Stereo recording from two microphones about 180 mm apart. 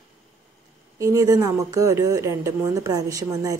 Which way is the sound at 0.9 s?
20° right (ahead or behind).